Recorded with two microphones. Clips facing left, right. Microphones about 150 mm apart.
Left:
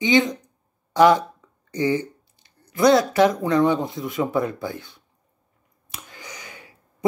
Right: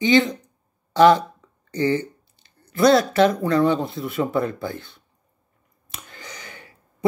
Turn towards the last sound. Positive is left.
turn(degrees=10)  # may be behind; listen again after turning